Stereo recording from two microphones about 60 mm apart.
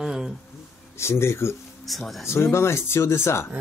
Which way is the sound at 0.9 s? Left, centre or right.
Left.